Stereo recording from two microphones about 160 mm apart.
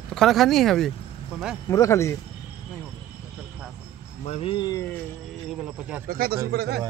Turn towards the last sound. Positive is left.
turn(degrees=-90)